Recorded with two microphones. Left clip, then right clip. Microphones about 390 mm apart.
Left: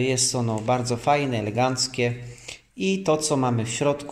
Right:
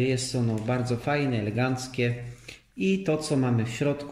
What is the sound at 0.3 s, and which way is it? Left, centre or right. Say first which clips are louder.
Speech: left 6 dB; left.